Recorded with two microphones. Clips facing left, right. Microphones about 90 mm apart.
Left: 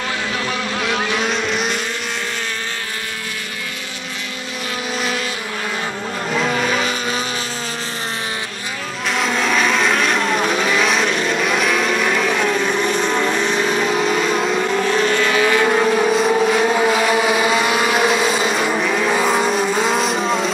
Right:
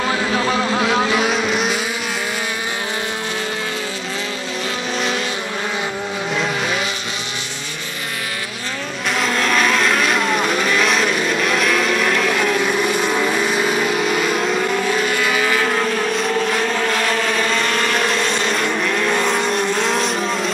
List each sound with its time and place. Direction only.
0.4 s vehicle: 25° right (ahead or behind)
1.1 s vehicle: 5° right (ahead or behind)
6.3 s vehicle: centre (ahead or behind)
9.1 s vehicle: centre (ahead or behind)